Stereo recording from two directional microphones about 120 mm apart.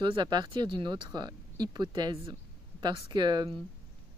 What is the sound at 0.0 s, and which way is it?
Speech, 40° right (ahead or behind).